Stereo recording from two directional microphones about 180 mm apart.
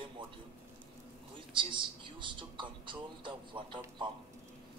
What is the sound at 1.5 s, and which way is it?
Speech, 30° right (ahead or behind).